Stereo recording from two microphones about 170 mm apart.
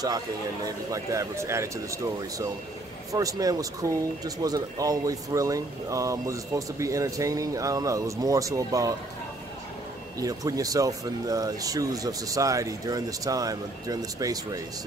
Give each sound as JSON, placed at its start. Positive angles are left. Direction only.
{"t": 0.7, "sound": "speech", "side_deg": -20}
{"t": 10.1, "sound": "speech", "side_deg": -20}